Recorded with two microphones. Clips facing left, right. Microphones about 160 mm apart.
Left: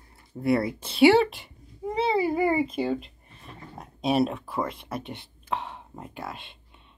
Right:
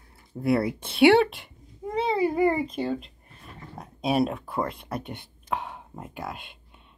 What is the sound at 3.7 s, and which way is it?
Dog, centre (ahead or behind).